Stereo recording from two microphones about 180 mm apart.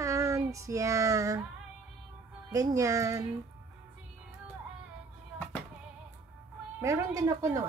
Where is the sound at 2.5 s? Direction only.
20° right (ahead or behind).